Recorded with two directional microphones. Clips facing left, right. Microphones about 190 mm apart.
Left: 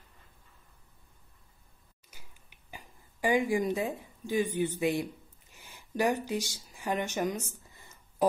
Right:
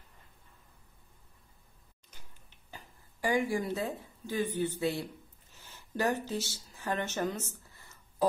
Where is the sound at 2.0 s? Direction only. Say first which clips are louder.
Left 1 dB; 10° left (ahead or behind).